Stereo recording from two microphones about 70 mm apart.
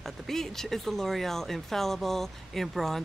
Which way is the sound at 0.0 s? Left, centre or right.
Centre.